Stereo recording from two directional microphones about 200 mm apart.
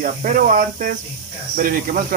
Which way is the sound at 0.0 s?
40° right (ahead or behind).